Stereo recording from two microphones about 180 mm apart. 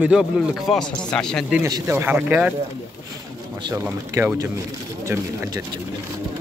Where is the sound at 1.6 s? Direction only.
15° right (ahead or behind).